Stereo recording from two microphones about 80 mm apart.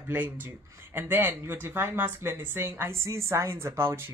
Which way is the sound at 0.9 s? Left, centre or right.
Right.